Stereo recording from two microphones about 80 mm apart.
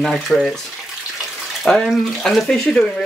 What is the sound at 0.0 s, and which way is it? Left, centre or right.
Speech, centre.